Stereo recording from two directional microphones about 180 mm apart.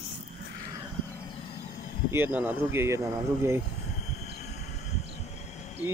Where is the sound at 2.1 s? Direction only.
10° right (ahead or behind).